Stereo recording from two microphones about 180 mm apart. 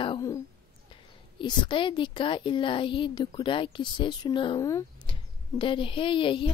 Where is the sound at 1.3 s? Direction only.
25° left (ahead or behind).